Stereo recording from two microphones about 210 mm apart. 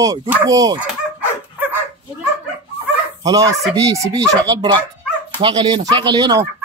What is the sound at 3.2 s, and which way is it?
Speech, 15° right (ahead or behind).